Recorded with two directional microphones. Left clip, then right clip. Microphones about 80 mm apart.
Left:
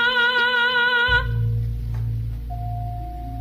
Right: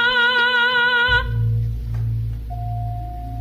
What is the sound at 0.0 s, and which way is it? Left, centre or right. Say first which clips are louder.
Music: right 2 dB; left.